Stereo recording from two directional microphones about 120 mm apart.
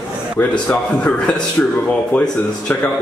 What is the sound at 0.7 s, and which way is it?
A man's voice, 5° left (ahead or behind).